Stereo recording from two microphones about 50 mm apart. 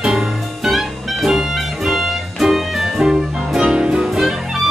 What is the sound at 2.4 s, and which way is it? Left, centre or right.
Music, centre.